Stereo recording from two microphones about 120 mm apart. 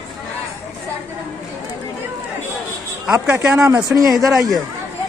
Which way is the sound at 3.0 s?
10° right (ahead or behind).